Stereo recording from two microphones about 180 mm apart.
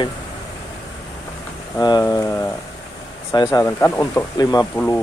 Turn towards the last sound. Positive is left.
turn(degrees=10)  # may be behind; listen again after turning